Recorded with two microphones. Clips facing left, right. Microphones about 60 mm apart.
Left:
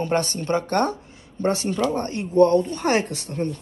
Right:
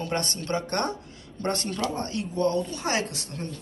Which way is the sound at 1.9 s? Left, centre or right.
Left.